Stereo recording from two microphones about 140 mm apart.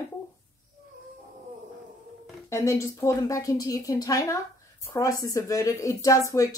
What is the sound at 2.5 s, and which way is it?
Speech, 20° left (ahead or behind).